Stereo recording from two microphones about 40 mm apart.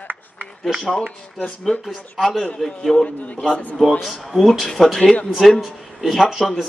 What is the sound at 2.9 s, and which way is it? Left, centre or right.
Speech, left.